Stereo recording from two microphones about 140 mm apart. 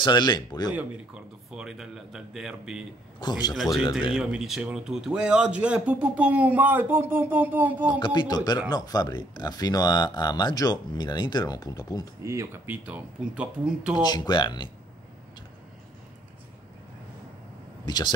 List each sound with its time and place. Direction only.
0.0 s speech: 30° left (ahead or behind)
0.7 s a man's voice: 5° right (ahead or behind)
3.2 s speech: 30° left (ahead or behind)
4.1 s a man's voice: 5° right (ahead or behind)
8.0 s speech: 30° left (ahead or behind)
12.3 s a man's voice: 15° right (ahead or behind)
13.9 s speech: 30° left (ahead or behind)
17.8 s speech: 30° left (ahead or behind)